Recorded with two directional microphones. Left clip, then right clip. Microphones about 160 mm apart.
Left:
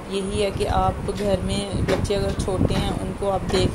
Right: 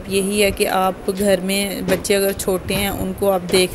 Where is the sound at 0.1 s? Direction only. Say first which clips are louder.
Right 7 dB; 35° right (ahead or behind).